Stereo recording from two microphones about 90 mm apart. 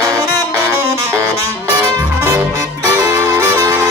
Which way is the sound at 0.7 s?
30° right (ahead or behind).